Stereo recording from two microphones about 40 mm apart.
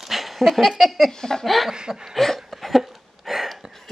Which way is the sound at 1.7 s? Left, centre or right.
Centre.